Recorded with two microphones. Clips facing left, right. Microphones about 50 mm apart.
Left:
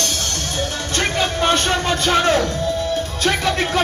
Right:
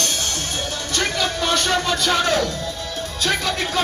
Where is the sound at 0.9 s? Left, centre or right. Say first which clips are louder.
Left 2 dB; left.